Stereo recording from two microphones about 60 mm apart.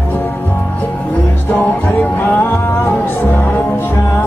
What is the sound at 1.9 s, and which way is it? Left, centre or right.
Music, left.